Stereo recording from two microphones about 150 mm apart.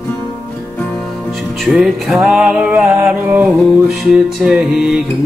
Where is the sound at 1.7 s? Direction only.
Centre (ahead or behind).